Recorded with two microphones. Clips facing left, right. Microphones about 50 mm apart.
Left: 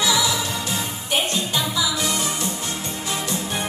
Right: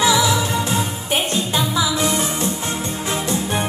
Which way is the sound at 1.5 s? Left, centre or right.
Right.